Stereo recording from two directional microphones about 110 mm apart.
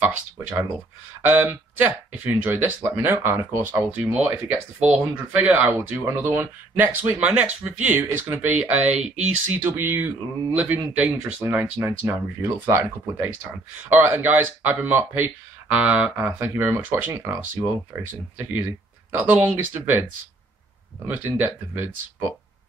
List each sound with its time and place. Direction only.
0.0 s speech: 15° right (ahead or behind)